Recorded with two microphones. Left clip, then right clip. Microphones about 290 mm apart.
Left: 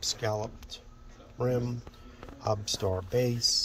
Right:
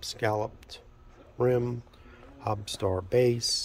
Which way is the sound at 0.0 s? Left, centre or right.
Centre.